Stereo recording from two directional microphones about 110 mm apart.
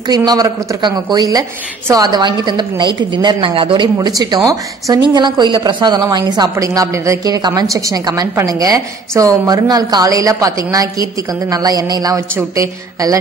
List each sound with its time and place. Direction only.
0.0 s a woman's voice: 40° right (ahead or behind)
4.2 s a woman's voice: 40° right (ahead or behind)
5.1 s a woman's voice: 45° right (ahead or behind)